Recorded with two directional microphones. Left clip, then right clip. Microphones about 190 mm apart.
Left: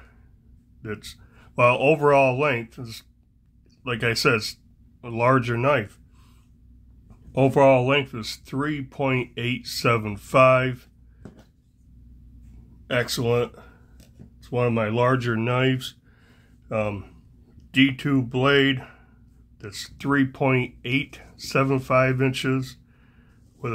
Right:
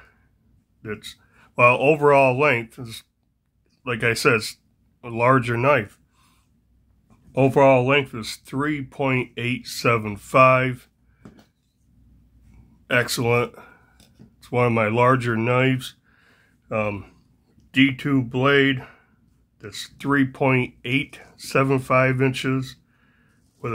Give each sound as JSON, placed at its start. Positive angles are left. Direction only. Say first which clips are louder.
{"t": 0.8, "sound": "speech", "louder": "right 2 dB", "side_deg": 0}
{"t": 7.1, "sound": "speech", "louder": "right 1 dB", "side_deg": -5}
{"t": 12.8, "sound": "speech", "louder": "right 3 dB", "side_deg": -15}